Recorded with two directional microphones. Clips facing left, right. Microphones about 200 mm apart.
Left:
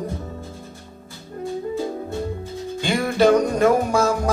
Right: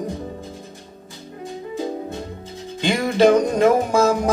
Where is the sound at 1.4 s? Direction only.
20° right (ahead or behind).